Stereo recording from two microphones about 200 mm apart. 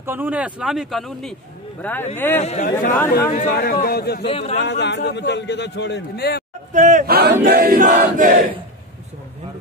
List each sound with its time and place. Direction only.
0.0 s speech: 10° right (ahead or behind); by 3.3 s 10° left (ahead or behind)
3.3 s a man's voice: 45° left (ahead or behind)
4.3 s speech: 30° left (ahead or behind)
4.6 s a man's voice: 60° left (ahead or behind)
6.7 s speech: 40° right (ahead or behind)
7.3 s a sound: 50° right (ahead or behind)